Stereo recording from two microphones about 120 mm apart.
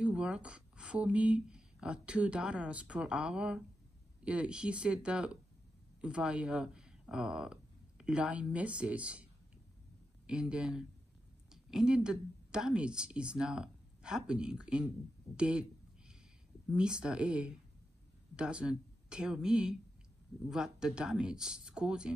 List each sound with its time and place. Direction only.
0.0 s a woman's voice: 10° right (ahead or behind)
16.7 s speech: 10° right (ahead or behind)